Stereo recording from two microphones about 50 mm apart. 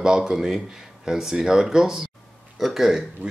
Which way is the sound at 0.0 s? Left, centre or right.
Centre.